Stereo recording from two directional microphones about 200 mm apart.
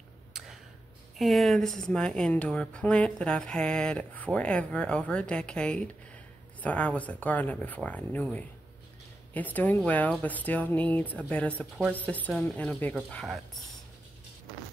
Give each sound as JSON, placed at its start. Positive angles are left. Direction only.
{"t": 1.1, "sound": "speech", "side_deg": 0}